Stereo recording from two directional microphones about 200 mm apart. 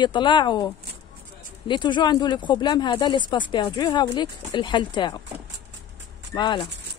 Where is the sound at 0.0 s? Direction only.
25° left (ahead or behind).